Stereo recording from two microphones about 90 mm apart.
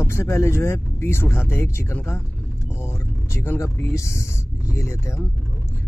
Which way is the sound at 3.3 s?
30° left (ahead or behind).